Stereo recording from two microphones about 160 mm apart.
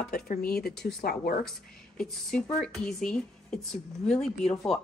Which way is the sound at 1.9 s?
5° left (ahead or behind).